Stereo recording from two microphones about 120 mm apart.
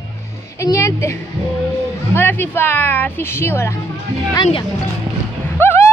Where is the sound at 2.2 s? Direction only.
15° left (ahead or behind).